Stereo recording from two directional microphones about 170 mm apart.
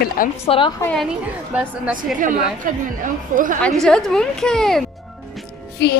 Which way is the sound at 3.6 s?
5° left (ahead or behind).